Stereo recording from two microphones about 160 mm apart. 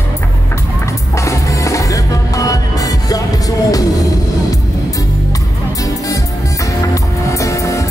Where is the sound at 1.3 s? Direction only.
20° left (ahead or behind).